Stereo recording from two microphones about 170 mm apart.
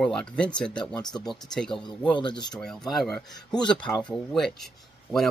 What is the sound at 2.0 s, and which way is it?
Speech, 25° left (ahead or behind).